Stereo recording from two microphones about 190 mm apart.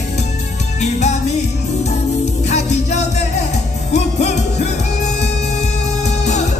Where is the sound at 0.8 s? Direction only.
35° left (ahead or behind).